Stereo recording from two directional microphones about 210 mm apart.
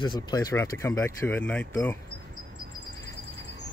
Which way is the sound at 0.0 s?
20° left (ahead or behind).